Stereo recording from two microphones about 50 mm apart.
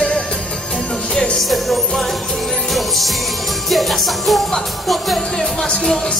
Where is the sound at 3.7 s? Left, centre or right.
Centre.